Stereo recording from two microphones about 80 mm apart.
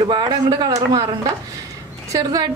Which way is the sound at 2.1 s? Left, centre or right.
Right.